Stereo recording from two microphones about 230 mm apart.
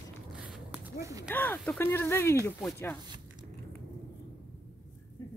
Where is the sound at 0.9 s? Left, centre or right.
Centre.